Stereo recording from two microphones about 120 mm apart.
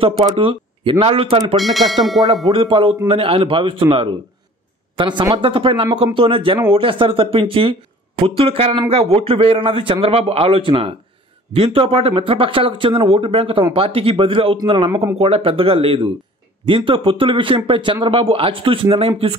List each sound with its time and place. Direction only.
0.0 s a man's voice: 50° right (ahead or behind)
1.6 s speech: centre (ahead or behind)
2.4 s a man's voice: 45° right (ahead or behind)